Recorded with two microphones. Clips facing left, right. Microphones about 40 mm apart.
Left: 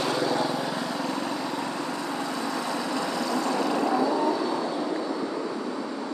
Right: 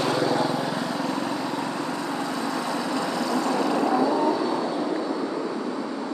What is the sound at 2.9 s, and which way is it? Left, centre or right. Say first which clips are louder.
Vehicle: right 2 dB; right.